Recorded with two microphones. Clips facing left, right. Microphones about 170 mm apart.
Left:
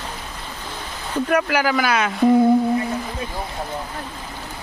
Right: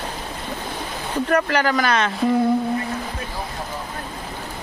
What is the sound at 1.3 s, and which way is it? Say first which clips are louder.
Speech: even; 5° left (ahead or behind).